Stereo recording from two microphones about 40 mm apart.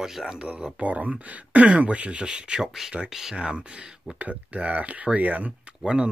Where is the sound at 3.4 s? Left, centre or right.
Right.